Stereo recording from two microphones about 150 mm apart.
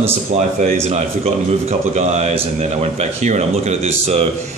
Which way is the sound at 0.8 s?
45° right (ahead or behind).